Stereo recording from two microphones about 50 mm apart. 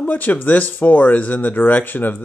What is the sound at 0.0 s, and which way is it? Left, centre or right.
Speech, left.